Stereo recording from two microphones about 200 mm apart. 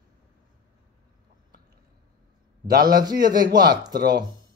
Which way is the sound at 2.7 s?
45° right (ahead or behind).